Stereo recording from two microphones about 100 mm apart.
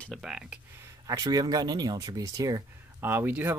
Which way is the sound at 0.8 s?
35° right (ahead or behind).